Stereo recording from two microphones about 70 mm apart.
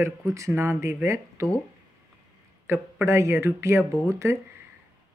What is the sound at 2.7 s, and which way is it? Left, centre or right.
Speech, right.